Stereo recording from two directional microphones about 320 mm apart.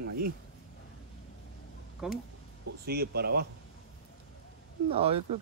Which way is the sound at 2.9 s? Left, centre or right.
Right.